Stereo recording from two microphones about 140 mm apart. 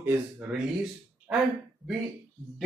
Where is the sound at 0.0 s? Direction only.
15° right (ahead or behind).